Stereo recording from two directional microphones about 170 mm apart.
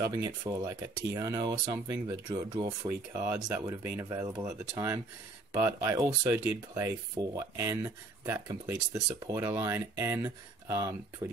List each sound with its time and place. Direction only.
0.1 s speech: 20° right (ahead or behind)